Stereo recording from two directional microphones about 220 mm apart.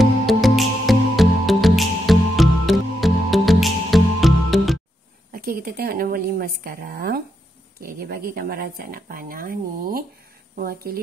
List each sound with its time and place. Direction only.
0.0 s music: centre (ahead or behind)
5.3 s speech: 40° right (ahead or behind)